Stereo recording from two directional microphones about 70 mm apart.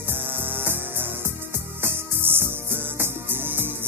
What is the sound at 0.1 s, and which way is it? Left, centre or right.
Music, right.